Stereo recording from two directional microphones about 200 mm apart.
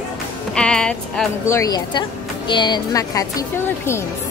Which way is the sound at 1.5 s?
20° left (ahead or behind).